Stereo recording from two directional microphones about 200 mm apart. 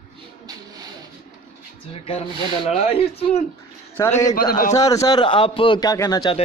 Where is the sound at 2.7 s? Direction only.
30° left (ahead or behind).